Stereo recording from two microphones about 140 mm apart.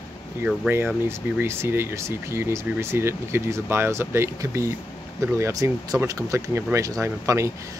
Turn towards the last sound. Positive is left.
turn(degrees=-20)  # may be behind; listen again after turning